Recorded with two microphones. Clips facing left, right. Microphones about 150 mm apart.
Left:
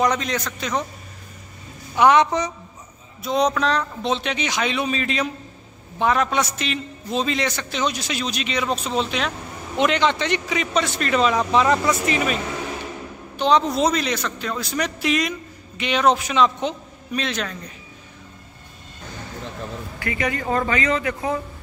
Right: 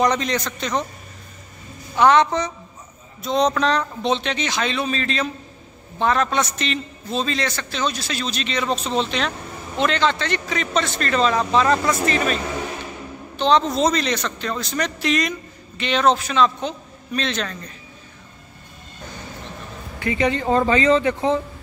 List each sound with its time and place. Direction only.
0.0 s a man's voice: 5° left (ahead or behind)
2.0 s a man's voice: 15° left (ahead or behind)
13.4 s a man's voice: 10° left (ahead or behind)
20.0 s speech: 25° right (ahead or behind)